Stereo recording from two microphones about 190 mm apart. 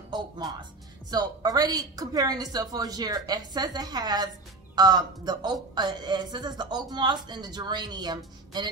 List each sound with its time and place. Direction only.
1.1 s speech: 20° right (ahead or behind)